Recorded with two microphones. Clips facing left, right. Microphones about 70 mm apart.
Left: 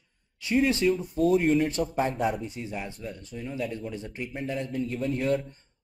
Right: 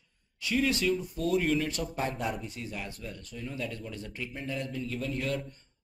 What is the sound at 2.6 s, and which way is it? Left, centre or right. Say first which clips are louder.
A man's voice: left 4 dB; left.